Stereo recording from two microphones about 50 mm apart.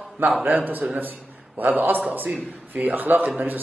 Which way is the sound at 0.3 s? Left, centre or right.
Right.